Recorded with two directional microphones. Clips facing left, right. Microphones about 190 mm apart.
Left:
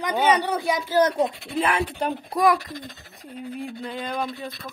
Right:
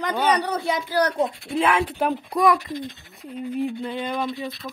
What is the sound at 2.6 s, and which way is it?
Speech, 40° left (ahead or behind).